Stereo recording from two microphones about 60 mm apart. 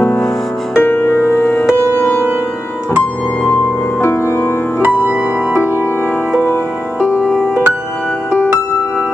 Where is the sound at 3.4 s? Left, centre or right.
Left.